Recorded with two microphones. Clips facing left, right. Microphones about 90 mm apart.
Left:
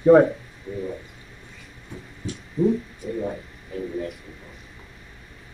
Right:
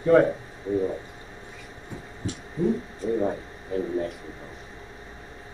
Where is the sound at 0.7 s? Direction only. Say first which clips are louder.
Right 7 dB; 30° right (ahead or behind).